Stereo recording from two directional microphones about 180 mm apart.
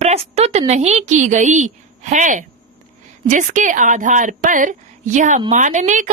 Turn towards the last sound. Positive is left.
turn(degrees=-45)  # may be behind; listen again after turning